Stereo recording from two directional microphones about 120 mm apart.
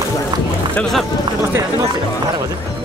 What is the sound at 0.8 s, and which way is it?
Speech, 5° left (ahead or behind).